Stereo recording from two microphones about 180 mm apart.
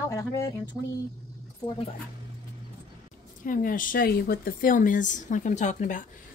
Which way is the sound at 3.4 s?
50° left (ahead or behind).